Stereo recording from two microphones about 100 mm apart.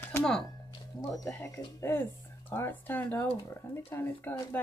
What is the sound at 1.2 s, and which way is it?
Speech, 25° left (ahead or behind).